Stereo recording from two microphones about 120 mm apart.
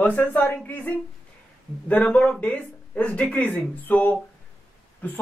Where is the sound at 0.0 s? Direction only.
10° left (ahead or behind).